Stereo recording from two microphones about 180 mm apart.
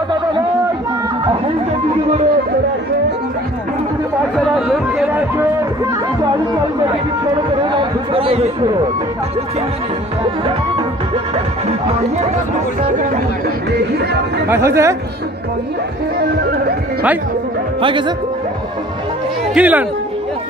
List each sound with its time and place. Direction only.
4.6 s chatter: centre (ahead or behind)
8.1 s speech: 30° right (ahead or behind)
14.5 s speech: 15° right (ahead or behind)
16.2 s music: 60° right (ahead or behind)
17.8 s speech: 25° right (ahead or behind)
19.5 s speech: 5° right (ahead or behind)